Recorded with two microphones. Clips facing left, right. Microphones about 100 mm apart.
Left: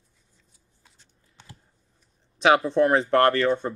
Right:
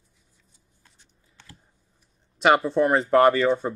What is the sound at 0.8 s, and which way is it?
Computer keyboard, 15° left (ahead or behind).